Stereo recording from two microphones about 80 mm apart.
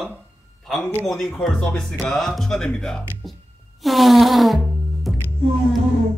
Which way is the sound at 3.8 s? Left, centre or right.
Centre.